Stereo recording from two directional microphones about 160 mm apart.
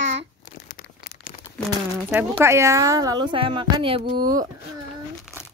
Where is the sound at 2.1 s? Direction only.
15° right (ahead or behind).